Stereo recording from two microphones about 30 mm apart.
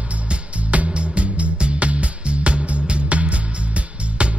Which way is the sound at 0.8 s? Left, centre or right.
Right.